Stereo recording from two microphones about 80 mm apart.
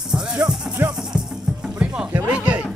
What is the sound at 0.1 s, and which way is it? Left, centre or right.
Music, centre.